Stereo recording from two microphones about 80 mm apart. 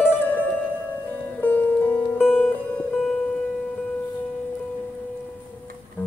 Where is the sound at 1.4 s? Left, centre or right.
Left.